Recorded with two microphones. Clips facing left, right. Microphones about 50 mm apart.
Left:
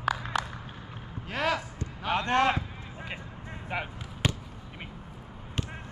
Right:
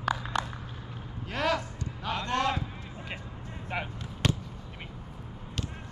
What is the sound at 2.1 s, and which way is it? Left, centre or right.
Basketball bounce, left.